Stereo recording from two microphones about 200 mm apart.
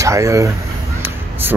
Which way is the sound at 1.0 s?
10° right (ahead or behind).